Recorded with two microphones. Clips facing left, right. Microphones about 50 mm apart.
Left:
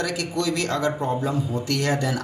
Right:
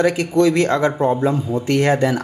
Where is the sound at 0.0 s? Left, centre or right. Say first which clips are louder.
Right 10 dB; right.